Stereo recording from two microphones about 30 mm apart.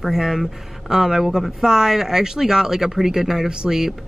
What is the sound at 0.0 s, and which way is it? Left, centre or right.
A woman's voice, centre.